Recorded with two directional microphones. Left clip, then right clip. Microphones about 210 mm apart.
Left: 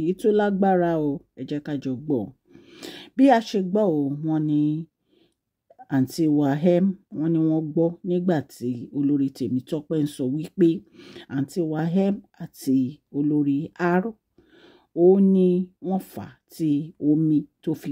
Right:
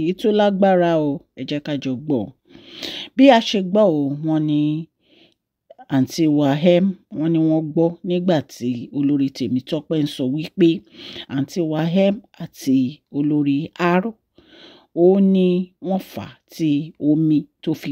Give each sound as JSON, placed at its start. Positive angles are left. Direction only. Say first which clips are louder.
{"t": 0.0, "sound": "speech", "louder": "right 4 dB", "side_deg": -15}